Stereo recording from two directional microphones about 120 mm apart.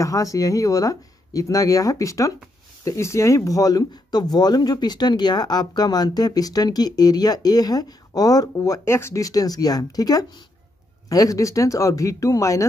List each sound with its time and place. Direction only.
0.0 s speech: 30° left (ahead or behind)